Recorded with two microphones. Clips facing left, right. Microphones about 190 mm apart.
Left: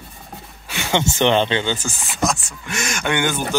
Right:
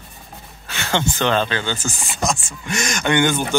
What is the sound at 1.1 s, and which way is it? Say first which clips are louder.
Speech: left 4 dB; 20° left (ahead or behind).